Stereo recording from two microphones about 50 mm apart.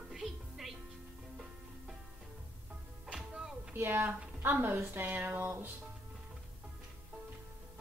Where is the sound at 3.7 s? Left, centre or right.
Right.